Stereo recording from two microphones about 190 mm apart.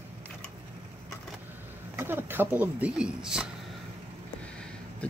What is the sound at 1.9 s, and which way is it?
Speech, 10° right (ahead or behind).